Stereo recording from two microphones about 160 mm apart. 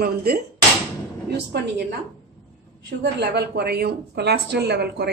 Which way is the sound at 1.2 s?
90° right.